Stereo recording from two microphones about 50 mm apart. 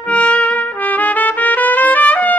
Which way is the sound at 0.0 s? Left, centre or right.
Left.